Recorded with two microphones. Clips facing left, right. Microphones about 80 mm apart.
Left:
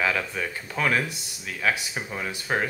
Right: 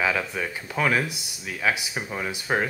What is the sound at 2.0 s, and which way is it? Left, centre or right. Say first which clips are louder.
Speech: right 2 dB; centre.